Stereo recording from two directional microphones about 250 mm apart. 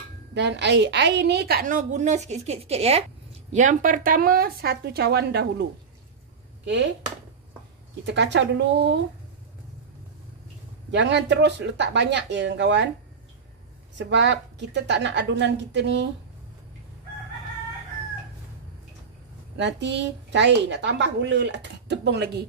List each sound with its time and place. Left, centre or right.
0.3 s a woman's voice: right
8.0 s a woman's voice: right
10.9 s a woman's voice: right
13.9 s a woman's voice: right
19.5 s a woman's voice: right